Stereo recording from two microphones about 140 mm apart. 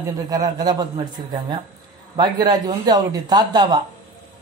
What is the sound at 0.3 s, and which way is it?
A man's voice, 30° right (ahead or behind).